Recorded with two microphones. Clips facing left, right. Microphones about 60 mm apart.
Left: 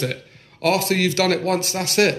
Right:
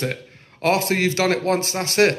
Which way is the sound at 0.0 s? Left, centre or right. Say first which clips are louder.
Even; right.